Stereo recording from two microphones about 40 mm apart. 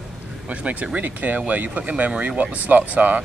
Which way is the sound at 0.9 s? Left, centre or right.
Right.